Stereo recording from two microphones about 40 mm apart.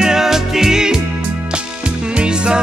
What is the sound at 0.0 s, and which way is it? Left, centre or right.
Music, centre.